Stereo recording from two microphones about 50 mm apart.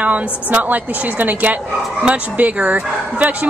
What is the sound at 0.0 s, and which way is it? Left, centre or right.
Speech, right.